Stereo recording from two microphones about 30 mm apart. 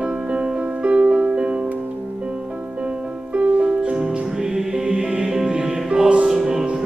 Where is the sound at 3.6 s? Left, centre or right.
Right.